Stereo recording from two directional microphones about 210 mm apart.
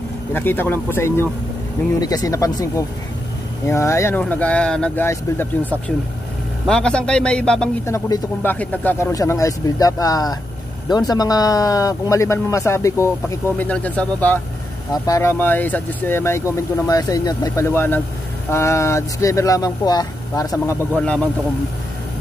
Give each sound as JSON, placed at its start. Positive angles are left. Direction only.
{"t": 0.3, "sound": "a man's voice", "side_deg": 10}
{"t": 3.6, "sound": "a man's voice", "side_deg": 15}